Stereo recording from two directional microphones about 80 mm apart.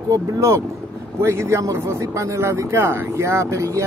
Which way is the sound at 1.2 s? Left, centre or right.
Right.